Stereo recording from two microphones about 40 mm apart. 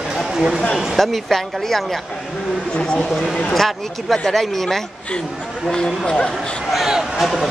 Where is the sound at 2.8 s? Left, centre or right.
Left.